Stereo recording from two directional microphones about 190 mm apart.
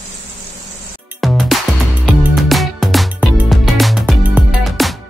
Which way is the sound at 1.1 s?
Centre (ahead or behind).